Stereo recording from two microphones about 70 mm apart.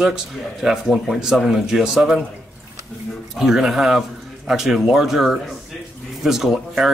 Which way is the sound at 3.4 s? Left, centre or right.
Centre.